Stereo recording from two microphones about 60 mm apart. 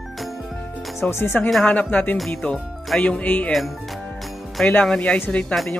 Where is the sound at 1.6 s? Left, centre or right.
Left.